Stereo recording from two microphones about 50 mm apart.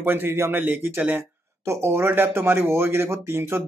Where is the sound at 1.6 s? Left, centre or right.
Right.